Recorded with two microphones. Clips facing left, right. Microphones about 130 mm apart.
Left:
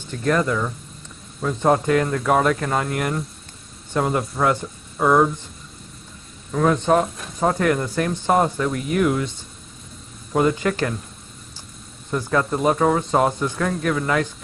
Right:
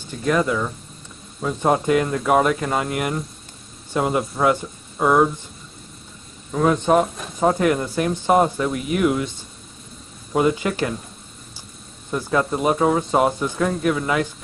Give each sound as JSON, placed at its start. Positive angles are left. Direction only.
{"t": 0.2, "sound": "speech", "side_deg": -10}
{"t": 6.5, "sound": "speech", "side_deg": -15}
{"t": 10.3, "sound": "speech", "side_deg": -15}
{"t": 12.1, "sound": "speech", "side_deg": -15}